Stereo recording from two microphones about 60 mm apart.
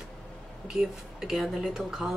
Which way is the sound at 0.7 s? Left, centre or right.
Centre.